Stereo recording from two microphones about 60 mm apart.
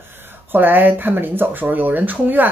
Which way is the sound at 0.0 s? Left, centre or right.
Right.